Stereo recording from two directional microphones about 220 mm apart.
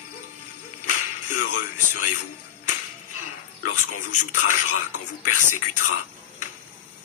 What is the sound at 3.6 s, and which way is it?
Speech, 90° left.